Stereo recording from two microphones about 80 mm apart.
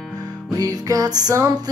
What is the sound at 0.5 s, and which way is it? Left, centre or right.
Music, right.